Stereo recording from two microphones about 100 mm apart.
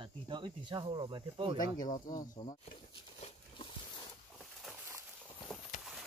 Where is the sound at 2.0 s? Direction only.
50° left (ahead or behind).